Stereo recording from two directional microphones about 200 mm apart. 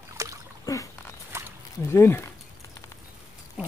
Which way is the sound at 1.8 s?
10° left (ahead or behind).